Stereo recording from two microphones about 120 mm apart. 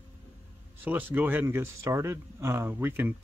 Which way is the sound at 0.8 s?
15° right (ahead or behind).